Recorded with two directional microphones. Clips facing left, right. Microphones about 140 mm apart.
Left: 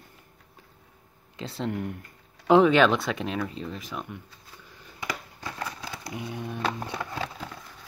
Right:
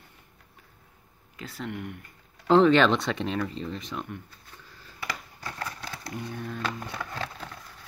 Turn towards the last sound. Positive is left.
turn(degrees=5)  # may be behind; listen again after turning